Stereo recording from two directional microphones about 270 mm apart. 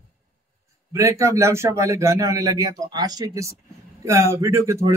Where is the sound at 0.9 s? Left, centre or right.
Centre.